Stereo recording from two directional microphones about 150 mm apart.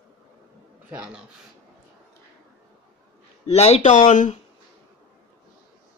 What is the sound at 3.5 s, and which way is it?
Speech, 45° left (ahead or behind).